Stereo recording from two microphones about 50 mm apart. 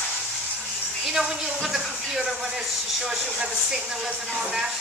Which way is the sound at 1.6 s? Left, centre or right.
Centre.